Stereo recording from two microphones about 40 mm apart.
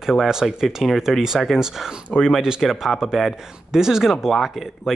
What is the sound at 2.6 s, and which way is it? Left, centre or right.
Speech, centre.